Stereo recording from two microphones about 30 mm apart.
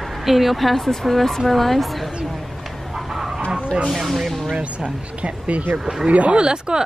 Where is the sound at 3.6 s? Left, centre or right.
Right.